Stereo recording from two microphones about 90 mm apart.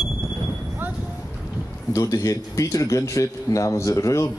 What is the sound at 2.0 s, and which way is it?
A man's voice, 40° left (ahead or behind).